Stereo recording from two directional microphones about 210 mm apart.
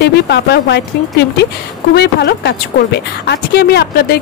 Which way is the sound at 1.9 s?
50° left (ahead or behind).